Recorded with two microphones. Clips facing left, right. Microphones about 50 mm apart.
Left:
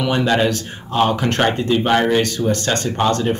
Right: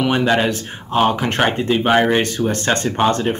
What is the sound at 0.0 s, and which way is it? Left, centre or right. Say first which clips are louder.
Speech: right 1 dB; centre.